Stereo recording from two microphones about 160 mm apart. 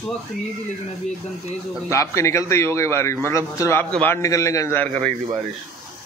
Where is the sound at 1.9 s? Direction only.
20° left (ahead or behind).